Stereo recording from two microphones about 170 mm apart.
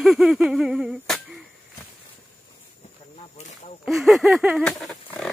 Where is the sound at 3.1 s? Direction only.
40° left (ahead or behind).